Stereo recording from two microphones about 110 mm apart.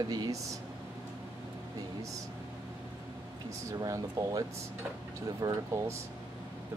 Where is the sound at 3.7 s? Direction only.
30° right (ahead or behind).